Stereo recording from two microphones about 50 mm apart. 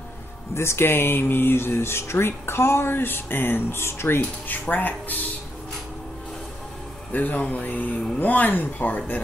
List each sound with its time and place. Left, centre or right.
0.6 s speech: left
4.2 s speech: left
7.1 s speech: left